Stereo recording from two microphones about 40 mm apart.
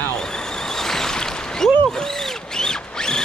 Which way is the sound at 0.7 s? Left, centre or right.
Centre.